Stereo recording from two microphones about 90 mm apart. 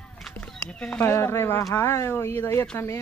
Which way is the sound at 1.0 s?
30° left (ahead or behind).